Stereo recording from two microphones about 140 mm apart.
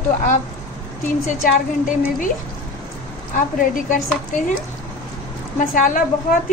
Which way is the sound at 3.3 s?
75° left (ahead or behind).